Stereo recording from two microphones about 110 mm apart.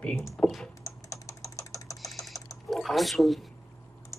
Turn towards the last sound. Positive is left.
turn(degrees=0)  # may be behind; listen again after turning